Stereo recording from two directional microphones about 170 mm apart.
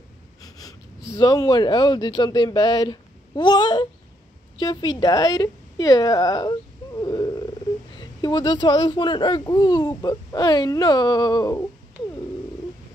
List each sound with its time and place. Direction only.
0.4 s wheeze: 20° left (ahead or behind)
1.1 s a woman's voice: 20° left (ahead or behind)